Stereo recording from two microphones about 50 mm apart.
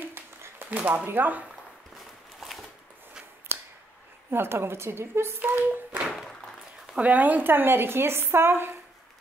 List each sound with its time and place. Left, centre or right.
0.0 s a sound: right
0.7 s speech: right
2.0 s walk: centre
4.3 s a woman's voice: right
5.5 s speech: right
7.0 s speech: right